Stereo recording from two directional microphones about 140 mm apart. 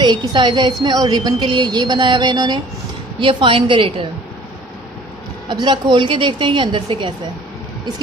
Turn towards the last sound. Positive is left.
turn(degrees=-35)  # may be behind; listen again after turning